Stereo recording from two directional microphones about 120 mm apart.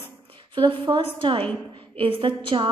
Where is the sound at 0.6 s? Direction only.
45° right (ahead or behind).